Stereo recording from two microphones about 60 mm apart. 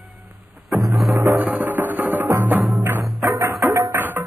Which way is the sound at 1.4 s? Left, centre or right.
Right.